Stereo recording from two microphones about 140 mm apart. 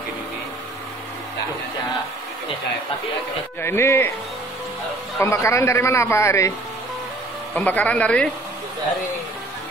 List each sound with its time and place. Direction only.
3.6 s speech: 15° left (ahead or behind)
5.2 s a man's voice: 20° left (ahead or behind)
7.5 s speech: 10° left (ahead or behind)